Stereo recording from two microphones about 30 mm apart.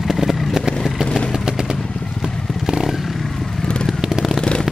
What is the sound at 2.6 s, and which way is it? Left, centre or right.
Motorcycle, centre.